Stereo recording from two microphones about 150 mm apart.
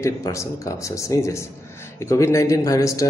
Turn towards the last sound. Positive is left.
turn(degrees=20)  # may be behind; listen again after turning